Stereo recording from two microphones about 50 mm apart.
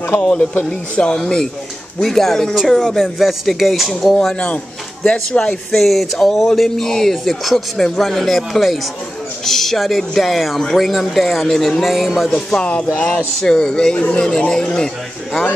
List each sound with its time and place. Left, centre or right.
0.2 s speech: left; by 3.9 s centre
3.9 s speech: centre
5.7 s speech: centre
12.6 s speech: left
13.4 s speech: centre